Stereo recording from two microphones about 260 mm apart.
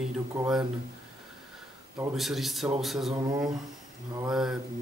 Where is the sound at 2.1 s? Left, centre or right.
Centre.